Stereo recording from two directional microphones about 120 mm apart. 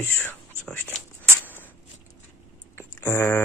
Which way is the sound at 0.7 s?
15° left (ahead or behind).